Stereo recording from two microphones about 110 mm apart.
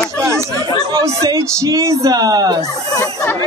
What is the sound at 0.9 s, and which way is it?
Speech, 30° right (ahead or behind).